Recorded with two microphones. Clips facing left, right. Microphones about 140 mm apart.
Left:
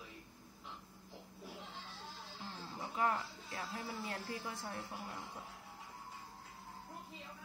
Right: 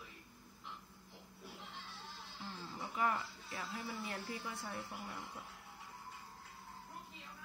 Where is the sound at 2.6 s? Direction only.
20° left (ahead or behind).